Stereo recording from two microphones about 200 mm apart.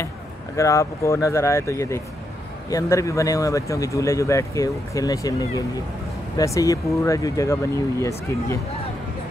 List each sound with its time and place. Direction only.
0.6 s speech: 15° left (ahead or behind)